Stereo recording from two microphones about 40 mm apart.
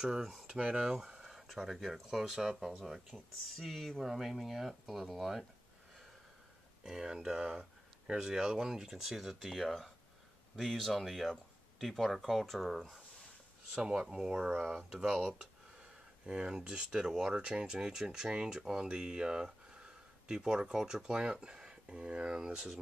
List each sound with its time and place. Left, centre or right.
0.0 s speech: centre
0.5 s a sound: centre
1.6 s speech: centre
6.8 s speech: centre
13.7 s speech: right
14.8 s speech: centre
21.5 s a sound: centre
21.9 s speech: right